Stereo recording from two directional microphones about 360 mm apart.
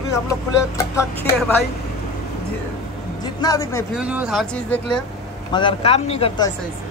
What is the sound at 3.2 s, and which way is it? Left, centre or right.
Speech, centre.